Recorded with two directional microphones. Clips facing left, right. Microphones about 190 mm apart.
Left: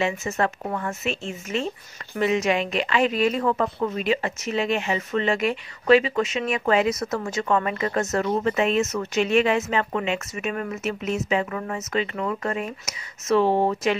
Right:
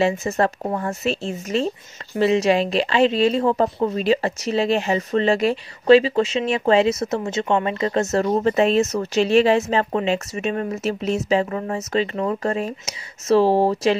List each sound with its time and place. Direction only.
0.0 s speech: 35° right (ahead or behind)